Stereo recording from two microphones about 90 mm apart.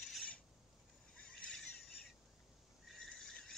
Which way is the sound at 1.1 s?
10° left (ahead or behind).